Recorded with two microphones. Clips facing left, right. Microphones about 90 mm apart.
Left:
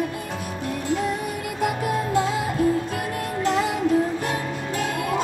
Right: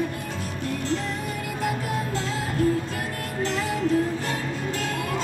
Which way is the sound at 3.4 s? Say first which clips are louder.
Left 3 dB; 15° left (ahead or behind).